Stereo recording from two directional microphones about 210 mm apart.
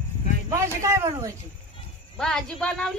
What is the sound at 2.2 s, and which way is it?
Speech, 5° left (ahead or behind).